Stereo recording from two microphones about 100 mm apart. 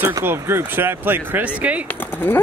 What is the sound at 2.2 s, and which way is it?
Speech, 20° left (ahead or behind).